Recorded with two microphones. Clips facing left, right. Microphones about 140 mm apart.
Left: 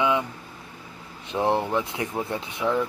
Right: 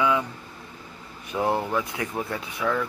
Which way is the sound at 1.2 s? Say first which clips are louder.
Left 1 dB; 20° left (ahead or behind).